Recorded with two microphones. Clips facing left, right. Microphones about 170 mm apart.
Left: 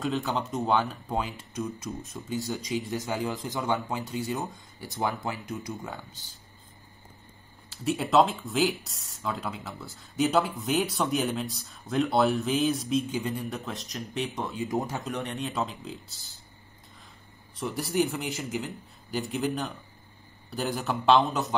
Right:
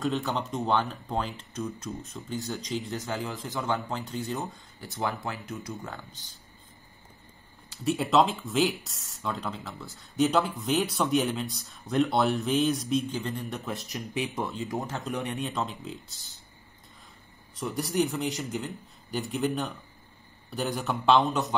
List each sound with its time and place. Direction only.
0.0 s speech: centre (ahead or behind); by 5.9 s 15° left (ahead or behind)
7.7 s speech: centre (ahead or behind)
14.6 s speech: 20° left (ahead or behind)
15.1 s speech: 10° right (ahead or behind)
15.4 s speech: centre (ahead or behind)
17.6 s speech: centre (ahead or behind)